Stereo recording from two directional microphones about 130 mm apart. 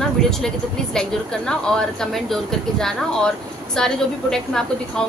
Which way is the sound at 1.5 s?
5° left (ahead or behind).